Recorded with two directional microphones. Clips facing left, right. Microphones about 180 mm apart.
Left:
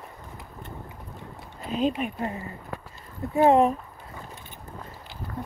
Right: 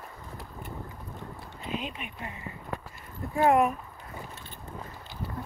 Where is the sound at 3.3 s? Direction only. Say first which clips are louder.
Left 4 dB; 25° left (ahead or behind).